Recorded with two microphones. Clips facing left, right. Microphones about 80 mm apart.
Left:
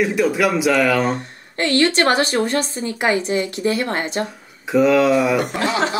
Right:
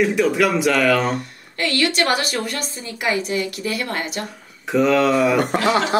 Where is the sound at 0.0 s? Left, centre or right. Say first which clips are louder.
Even; centre.